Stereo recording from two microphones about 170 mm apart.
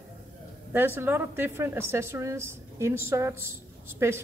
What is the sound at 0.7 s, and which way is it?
A woman's voice, 10° right (ahead or behind).